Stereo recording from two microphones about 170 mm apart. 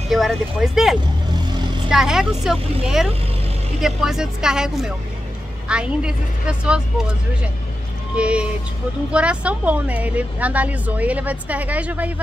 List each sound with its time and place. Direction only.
0.1 s speech: centre (ahead or behind)
1.3 s vehicle: 25° right (ahead or behind)
1.9 s speech: 5° right (ahead or behind)
8.2 s a woman's voice: 5° right (ahead or behind)